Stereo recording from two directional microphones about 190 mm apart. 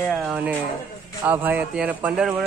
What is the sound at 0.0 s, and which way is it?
Speech, centre (ahead or behind).